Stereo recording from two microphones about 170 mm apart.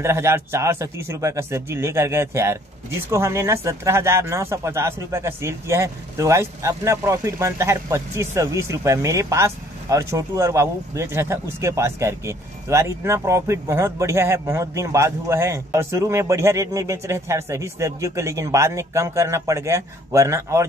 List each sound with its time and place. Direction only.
0.0 s speech: 15° right (ahead or behind)